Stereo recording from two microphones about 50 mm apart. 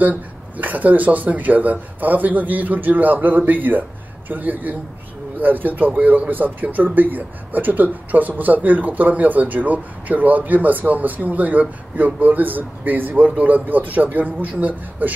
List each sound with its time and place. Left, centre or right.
0.0 s speech: right